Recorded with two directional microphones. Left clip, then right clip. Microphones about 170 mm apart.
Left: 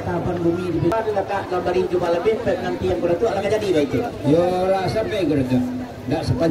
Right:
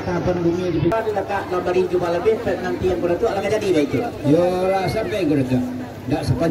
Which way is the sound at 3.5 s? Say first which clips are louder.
Even; 55° left (ahead or behind).